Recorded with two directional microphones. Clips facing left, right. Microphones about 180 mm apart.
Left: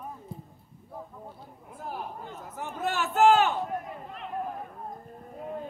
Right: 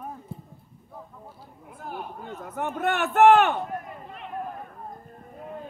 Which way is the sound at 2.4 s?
65° right (ahead or behind).